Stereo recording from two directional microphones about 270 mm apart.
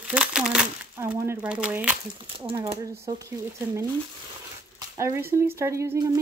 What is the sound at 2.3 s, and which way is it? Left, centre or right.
Speech, centre.